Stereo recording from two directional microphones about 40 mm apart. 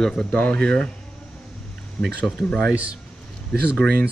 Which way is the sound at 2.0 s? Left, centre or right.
Centre.